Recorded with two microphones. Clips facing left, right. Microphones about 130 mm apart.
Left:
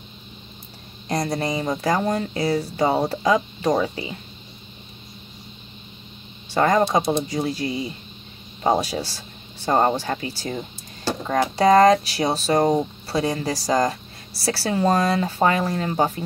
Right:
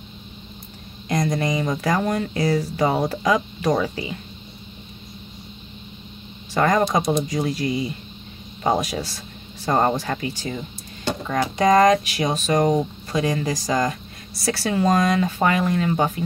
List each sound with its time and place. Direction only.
1.0 s speech: 35° left (ahead or behind)
6.5 s speech: 30° left (ahead or behind)